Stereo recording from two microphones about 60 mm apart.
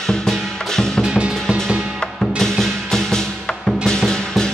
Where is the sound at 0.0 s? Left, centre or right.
Centre.